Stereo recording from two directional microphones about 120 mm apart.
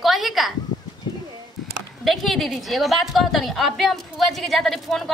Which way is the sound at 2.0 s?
Centre (ahead or behind).